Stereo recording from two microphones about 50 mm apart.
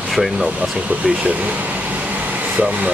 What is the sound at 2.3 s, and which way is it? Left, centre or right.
Vehicle, right.